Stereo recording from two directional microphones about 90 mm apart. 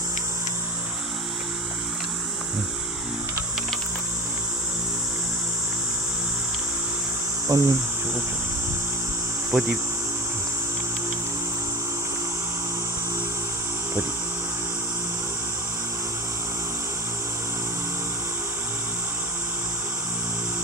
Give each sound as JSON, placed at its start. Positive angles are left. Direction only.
{"t": 7.4, "sound": "insect", "side_deg": -40}
{"t": 9.5, "sound": "speech", "side_deg": -15}